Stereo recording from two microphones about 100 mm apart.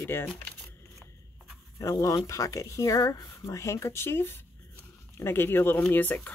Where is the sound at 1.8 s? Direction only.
35° left (ahead or behind).